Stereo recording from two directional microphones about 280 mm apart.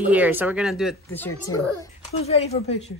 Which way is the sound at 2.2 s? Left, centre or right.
Left.